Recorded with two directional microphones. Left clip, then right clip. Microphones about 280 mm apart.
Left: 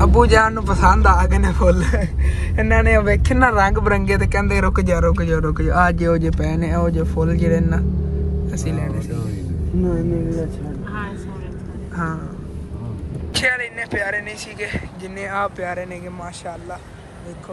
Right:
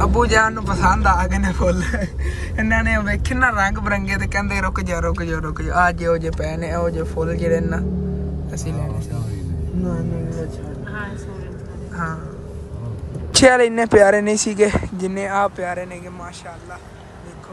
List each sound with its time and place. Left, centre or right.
0.0 s speech: centre
13.3 s speech: right